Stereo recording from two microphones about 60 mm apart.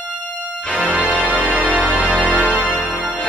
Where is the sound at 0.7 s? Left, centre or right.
Right.